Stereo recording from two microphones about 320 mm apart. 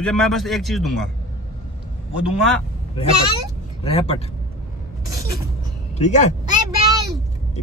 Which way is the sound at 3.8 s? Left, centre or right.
Centre.